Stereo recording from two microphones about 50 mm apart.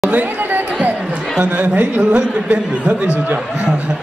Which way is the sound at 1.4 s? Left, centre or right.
Right.